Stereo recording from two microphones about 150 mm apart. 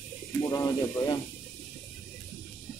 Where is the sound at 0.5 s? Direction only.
25° left (ahead or behind).